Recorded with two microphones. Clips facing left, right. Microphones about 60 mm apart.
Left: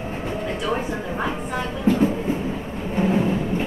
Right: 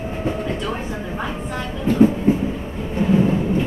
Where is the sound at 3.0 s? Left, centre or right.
Left.